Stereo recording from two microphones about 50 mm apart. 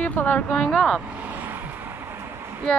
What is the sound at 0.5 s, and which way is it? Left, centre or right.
Speech, left.